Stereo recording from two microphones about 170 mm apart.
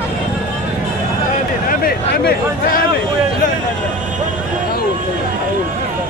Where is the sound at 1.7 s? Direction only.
60° left (ahead or behind).